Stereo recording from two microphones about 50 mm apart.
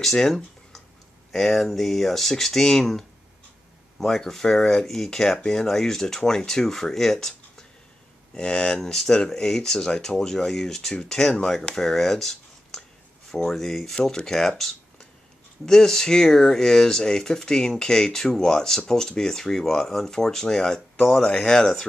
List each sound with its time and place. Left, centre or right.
0.0 s speech: centre